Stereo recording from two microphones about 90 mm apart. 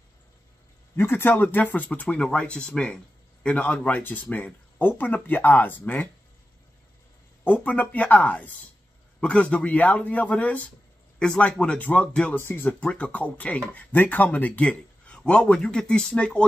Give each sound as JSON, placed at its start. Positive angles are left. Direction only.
{"t": 0.9, "sound": "speech", "side_deg": 25}
{"t": 7.4, "sound": "speech", "side_deg": 20}
{"t": 12.4, "sound": "speech", "side_deg": 25}